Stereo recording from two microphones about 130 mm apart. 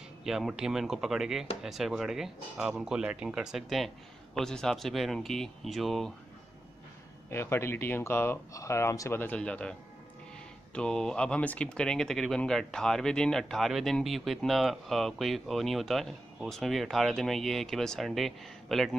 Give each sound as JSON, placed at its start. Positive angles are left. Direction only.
{"t": 0.2, "sound": "speech", "side_deg": -5}
{"t": 7.2, "sound": "speech", "side_deg": 20}